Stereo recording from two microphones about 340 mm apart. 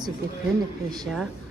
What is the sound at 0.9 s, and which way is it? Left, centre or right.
Speech, centre.